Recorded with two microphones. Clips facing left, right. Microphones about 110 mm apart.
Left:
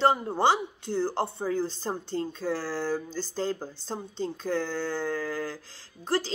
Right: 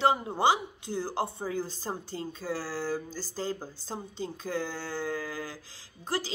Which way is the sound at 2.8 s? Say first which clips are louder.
Left 3 dB; 55° left (ahead or behind).